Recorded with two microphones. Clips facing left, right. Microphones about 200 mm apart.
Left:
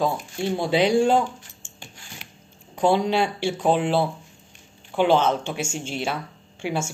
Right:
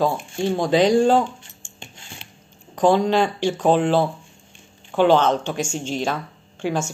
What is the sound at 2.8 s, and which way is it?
Speech, 10° left (ahead or behind).